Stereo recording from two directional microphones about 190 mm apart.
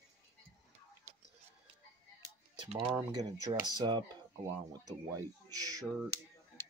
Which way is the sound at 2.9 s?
20° right (ahead or behind).